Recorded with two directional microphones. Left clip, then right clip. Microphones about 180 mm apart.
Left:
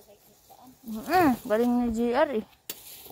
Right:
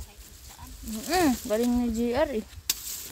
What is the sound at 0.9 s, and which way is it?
Speech, 20° right (ahead or behind).